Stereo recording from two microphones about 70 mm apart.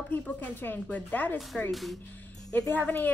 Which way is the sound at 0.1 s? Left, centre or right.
Left.